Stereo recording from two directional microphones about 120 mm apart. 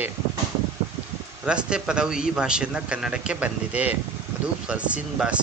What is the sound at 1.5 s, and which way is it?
A man's voice, 10° right (ahead or behind).